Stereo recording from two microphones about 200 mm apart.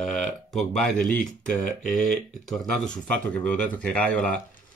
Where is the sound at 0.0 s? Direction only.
Centre (ahead or behind).